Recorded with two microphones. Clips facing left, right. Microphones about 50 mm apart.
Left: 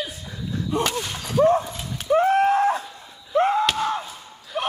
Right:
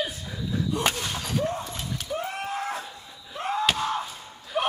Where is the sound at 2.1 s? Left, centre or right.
Left.